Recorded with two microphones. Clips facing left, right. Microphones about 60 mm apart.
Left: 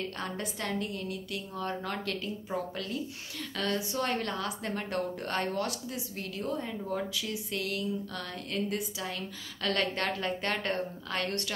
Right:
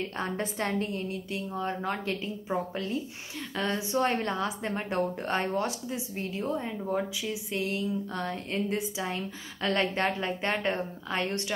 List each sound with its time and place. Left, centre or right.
0.2 s speech: right